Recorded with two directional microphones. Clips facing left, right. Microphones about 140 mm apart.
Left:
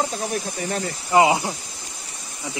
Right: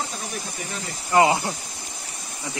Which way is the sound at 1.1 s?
15° left (ahead or behind).